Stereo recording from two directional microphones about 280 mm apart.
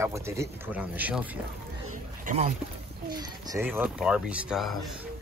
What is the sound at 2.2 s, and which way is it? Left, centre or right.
Speech, right.